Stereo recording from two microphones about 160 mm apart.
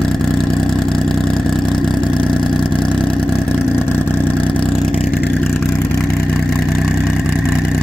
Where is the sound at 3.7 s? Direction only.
15° left (ahead or behind); by 7.1 s 5° right (ahead or behind).